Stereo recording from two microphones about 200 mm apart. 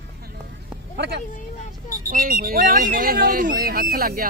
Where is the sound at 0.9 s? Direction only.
55° right (ahead or behind).